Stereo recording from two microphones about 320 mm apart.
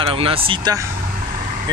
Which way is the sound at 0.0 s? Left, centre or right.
Centre.